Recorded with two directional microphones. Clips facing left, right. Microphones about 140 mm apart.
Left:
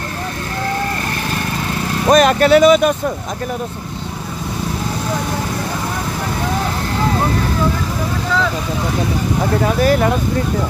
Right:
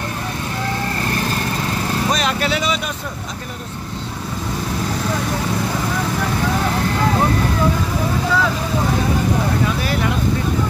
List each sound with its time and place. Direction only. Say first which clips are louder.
2.0 s speech: left 12 dB; 50° left (ahead or behind)
9.8 s speech: left 7 dB; 45° left (ahead or behind)